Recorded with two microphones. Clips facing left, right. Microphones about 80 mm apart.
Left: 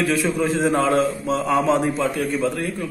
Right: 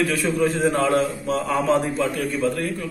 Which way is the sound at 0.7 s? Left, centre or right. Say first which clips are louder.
Left 3 dB; left.